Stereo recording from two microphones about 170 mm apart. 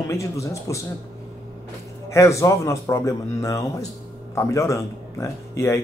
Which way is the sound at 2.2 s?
20° left (ahead or behind).